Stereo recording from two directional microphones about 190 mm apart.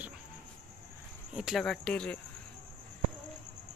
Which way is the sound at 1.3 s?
Centre (ahead or behind).